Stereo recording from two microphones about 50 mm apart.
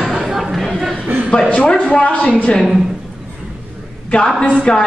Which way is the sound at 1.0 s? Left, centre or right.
Right.